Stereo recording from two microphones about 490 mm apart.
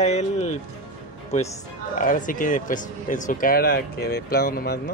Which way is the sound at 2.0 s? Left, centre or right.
Centre.